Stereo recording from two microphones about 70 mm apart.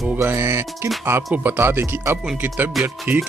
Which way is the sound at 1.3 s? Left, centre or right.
Right.